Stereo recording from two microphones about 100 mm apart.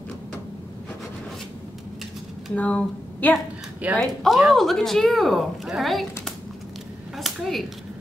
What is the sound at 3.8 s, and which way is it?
Speech, 15° right (ahead or behind).